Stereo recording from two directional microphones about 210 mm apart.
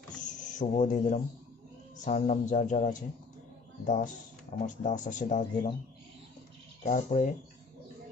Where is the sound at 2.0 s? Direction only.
35° left (ahead or behind).